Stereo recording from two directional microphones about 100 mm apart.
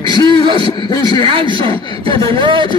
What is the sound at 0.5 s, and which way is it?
Speech, 50° left (ahead or behind).